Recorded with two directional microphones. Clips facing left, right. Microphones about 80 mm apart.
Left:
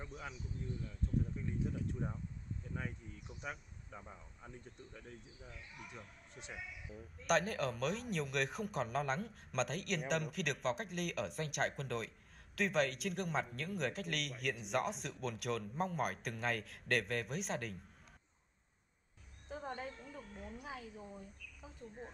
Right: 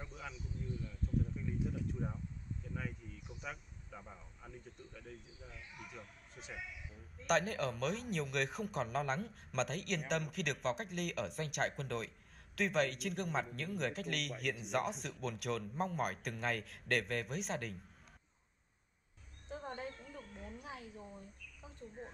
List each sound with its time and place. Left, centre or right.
0.1 s speech: left
5.5 s a man's voice: centre
19.5 s a sound: centre